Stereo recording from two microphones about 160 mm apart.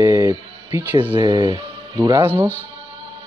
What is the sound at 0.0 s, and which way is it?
Music, 20° right (ahead or behind).